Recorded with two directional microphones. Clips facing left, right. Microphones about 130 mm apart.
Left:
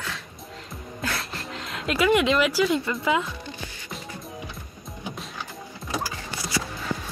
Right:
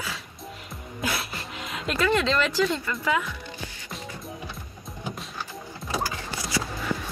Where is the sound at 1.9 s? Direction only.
15° left (ahead or behind).